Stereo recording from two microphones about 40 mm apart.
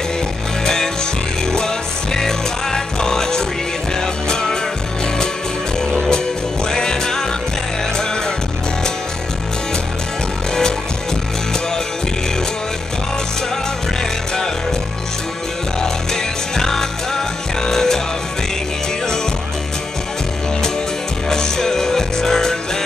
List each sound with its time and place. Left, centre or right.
1.4 s music: centre
5.9 s music: centre
15.8 s music: centre
21.3 s music: centre